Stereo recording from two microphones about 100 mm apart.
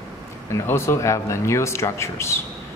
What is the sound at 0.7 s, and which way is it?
Speech, 30° left (ahead or behind).